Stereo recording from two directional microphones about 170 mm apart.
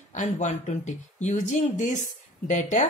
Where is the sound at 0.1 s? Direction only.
45° left (ahead or behind).